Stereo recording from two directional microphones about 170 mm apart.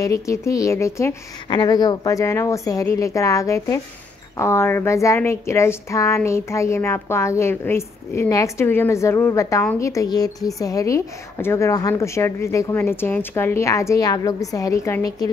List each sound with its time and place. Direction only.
0.0 s speech: 20° left (ahead or behind)